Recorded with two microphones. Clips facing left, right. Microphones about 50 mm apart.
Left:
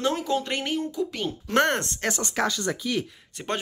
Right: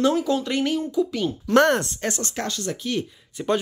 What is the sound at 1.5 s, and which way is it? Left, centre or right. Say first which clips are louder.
Speech: right 5 dB; left.